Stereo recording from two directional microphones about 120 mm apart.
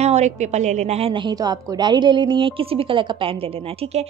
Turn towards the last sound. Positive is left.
turn(degrees=-55)  # may be behind; listen again after turning